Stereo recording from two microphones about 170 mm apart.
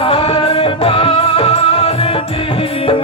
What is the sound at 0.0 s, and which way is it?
Music, 35° left (ahead or behind).